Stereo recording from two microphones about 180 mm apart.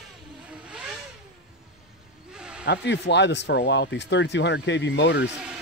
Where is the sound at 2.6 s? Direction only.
75° left (ahead or behind).